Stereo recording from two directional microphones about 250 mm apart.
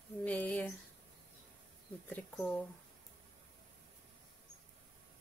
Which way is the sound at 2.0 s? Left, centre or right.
Centre.